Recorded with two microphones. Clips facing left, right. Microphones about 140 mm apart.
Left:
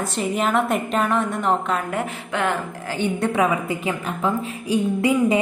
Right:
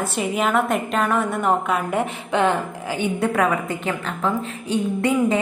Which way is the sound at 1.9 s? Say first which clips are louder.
Right 4 dB; 20° right (ahead or behind).